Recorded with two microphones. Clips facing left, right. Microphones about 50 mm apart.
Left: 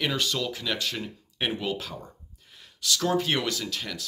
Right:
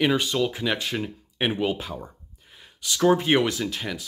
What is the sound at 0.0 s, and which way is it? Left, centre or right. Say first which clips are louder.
Speech: right 6 dB; centre.